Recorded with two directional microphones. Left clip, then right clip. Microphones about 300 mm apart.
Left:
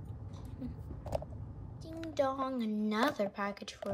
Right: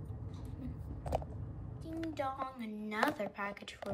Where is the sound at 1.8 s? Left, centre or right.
Centre.